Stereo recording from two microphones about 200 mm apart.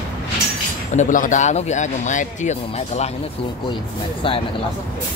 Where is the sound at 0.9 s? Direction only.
40° left (ahead or behind).